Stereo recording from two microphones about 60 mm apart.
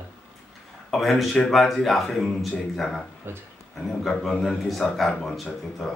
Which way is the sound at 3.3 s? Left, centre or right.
Right.